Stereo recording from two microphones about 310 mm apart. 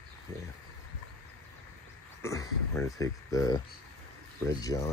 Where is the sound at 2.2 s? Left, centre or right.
Centre.